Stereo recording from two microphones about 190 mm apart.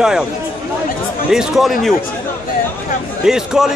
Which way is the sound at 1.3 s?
Centre (ahead or behind).